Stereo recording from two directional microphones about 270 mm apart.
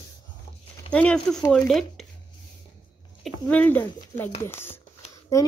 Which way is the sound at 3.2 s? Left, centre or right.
Centre.